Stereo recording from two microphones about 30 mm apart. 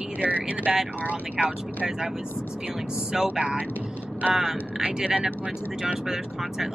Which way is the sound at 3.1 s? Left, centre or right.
Centre.